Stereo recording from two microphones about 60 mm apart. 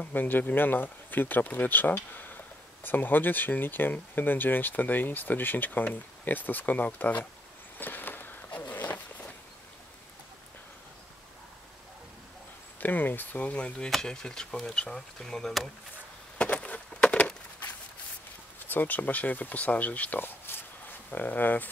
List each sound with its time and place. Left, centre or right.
0.0 s speech: left
7.8 s walk: left
12.8 s speech: left; by 15.5 s centre
16.3 s a sound: centre
18.7 s speech: left